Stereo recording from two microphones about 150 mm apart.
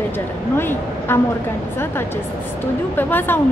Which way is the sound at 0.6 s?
15° left (ahead or behind).